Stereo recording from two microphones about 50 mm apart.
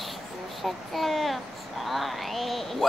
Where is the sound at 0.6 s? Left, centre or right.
Centre.